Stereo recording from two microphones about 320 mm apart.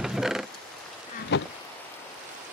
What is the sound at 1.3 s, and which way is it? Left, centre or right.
Insect, left.